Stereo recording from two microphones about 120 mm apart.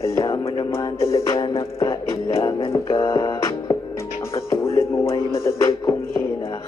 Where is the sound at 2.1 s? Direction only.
25° left (ahead or behind).